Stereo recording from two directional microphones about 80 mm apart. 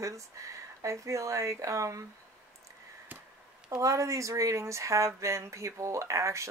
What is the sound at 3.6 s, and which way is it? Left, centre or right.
Speech, right.